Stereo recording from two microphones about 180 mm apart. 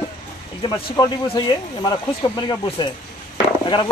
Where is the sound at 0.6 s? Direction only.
25° left (ahead or behind).